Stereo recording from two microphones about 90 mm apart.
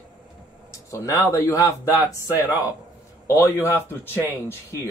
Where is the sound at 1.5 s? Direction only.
40° left (ahead or behind).